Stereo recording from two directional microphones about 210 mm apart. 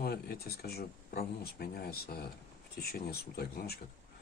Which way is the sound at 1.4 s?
50° left (ahead or behind).